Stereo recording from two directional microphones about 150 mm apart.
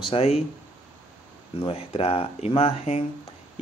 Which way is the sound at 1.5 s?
35° left (ahead or behind).